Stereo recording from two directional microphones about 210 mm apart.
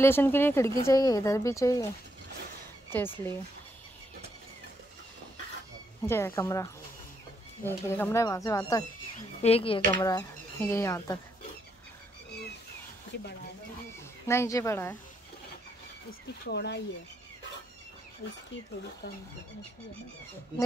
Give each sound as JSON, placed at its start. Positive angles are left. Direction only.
{"t": 0.0, "sound": "speech", "side_deg": 10}
{"t": 2.9, "sound": "speech", "side_deg": 10}
{"t": 6.0, "sound": "speech", "side_deg": 10}
{"t": 9.4, "sound": "speech", "side_deg": 25}
{"t": 9.9, "sound": "speech", "side_deg": 15}
{"t": 13.1, "sound": "speech", "side_deg": 55}
{"t": 14.2, "sound": "speech", "side_deg": 10}
{"t": 16.4, "sound": "speech", "side_deg": 55}